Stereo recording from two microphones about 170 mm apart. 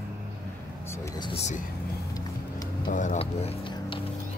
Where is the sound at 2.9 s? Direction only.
50° left (ahead or behind).